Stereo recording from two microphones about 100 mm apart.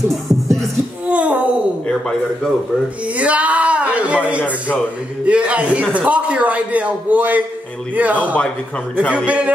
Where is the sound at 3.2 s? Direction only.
15° right (ahead or behind).